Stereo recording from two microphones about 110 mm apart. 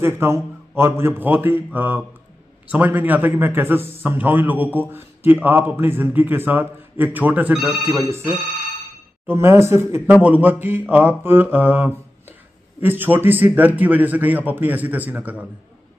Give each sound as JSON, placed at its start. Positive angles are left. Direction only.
{"t": 0.0, "sound": "speech", "side_deg": -20}